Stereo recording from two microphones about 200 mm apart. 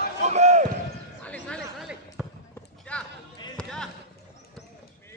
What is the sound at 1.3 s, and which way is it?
Basketball bounce, 5° left (ahead or behind).